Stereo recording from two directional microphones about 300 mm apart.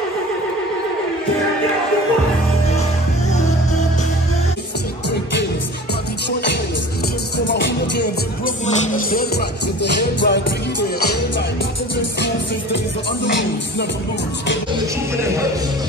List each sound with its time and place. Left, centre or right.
7.4 s music: left
8.6 s music: left